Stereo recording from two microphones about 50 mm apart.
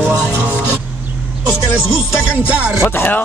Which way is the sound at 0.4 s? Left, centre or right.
Right.